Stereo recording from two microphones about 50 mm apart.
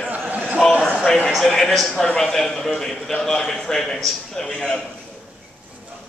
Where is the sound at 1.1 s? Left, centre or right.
Centre.